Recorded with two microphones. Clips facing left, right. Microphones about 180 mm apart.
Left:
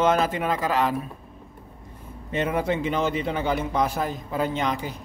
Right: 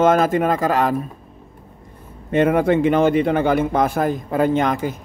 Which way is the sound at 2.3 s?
55° right (ahead or behind).